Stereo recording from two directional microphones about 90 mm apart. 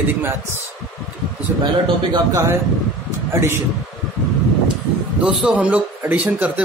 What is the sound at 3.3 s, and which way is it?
Speech, 30° right (ahead or behind).